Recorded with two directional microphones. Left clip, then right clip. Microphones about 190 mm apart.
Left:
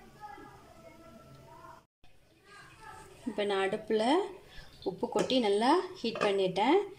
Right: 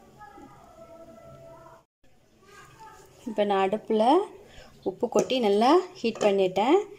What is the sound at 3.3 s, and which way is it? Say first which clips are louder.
Speech: right 7 dB; centre (ahead or behind).